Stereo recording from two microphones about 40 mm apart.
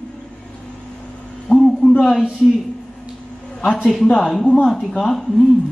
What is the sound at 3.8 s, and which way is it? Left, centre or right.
A woman's voice, centre.